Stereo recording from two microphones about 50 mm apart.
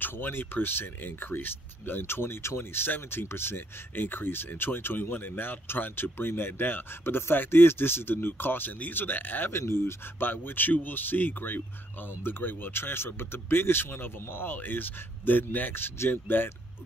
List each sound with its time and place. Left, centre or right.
0.0 s speech: left
9.5 s speech: left